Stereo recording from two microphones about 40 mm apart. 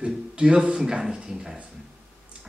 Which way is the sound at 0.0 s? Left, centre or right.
Right.